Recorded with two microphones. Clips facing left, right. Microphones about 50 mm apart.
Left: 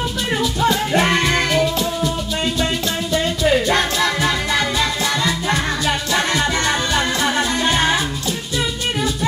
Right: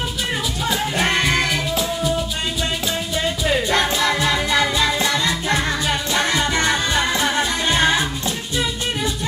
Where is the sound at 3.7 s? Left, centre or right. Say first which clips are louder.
Even; centre.